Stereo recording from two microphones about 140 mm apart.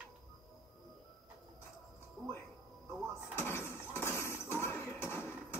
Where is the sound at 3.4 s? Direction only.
15° left (ahead or behind).